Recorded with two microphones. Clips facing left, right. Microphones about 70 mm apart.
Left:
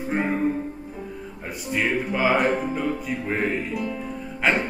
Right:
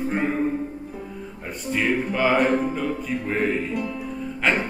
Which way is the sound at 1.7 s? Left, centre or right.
Centre.